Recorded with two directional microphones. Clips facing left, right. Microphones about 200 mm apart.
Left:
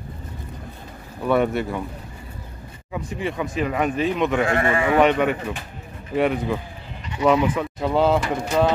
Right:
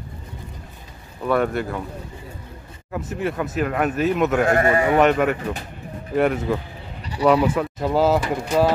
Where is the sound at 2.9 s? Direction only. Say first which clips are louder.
Right 2 dB; centre (ahead or behind).